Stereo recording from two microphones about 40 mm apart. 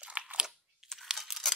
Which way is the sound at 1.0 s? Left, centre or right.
Centre.